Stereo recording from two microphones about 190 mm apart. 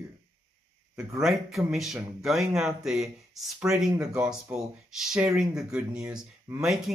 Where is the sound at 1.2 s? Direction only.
Centre (ahead or behind).